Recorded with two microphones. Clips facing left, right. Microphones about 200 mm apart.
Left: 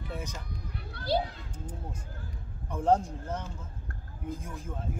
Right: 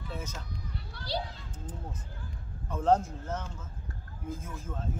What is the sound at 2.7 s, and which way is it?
Speech, 10° left (ahead or behind).